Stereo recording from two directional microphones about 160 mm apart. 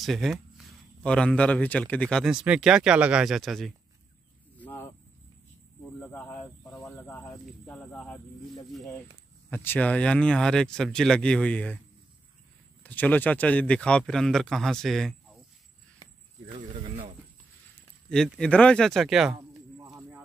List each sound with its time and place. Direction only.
0.0 s speech: centre (ahead or behind)
4.6 s cricket: 10° left (ahead or behind)
5.9 s cricket: 10° left (ahead or behind)
9.5 s speech: 10° left (ahead or behind)
12.8 s speech: 10° left (ahead or behind)
16.5 s a sound: 35° right (ahead or behind)
18.1 s speech: 5° left (ahead or behind)
19.8 s a sound: 20° right (ahead or behind)